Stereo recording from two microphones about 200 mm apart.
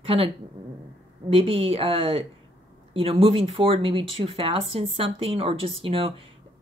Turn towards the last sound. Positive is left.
turn(degrees=-25)  # may be behind; listen again after turning